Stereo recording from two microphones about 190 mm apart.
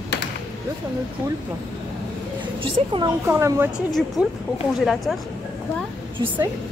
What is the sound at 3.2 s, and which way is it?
Speech, 15° right (ahead or behind).